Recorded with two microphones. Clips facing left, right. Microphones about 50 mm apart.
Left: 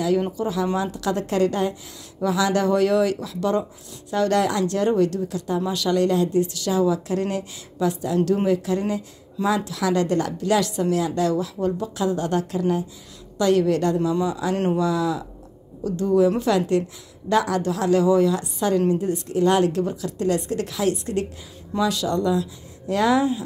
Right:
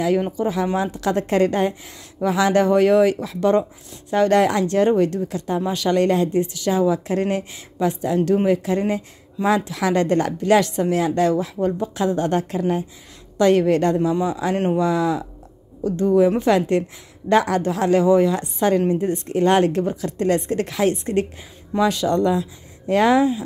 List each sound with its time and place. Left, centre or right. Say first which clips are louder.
0.4 s a woman's voice: right 2 dB; right